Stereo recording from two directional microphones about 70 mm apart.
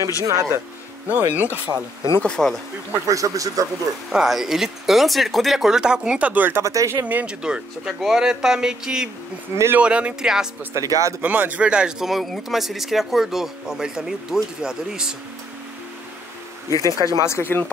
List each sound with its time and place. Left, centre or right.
0.2 s speech: right
1.0 s speech: right
2.2 s speech: centre
3.1 s speech: right
4.1 s speech: centre; by 6.6 s right
6.6 s speech: right
6.9 s speech: right
7.2 s speech: centre
10.7 s speech: right
11.1 s speech: right
12.1 s speech: centre
16.7 s speech: left
17.3 s speech: left